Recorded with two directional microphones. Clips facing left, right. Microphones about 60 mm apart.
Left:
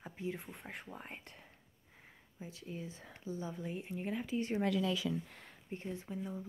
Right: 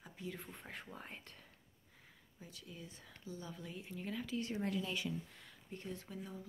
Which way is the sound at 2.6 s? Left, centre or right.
Left.